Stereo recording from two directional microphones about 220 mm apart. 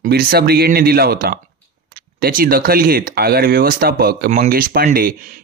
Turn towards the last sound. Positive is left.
turn(degrees=-40)  # may be behind; listen again after turning